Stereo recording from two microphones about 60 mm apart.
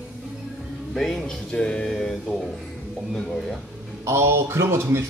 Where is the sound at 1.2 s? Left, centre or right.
Centre.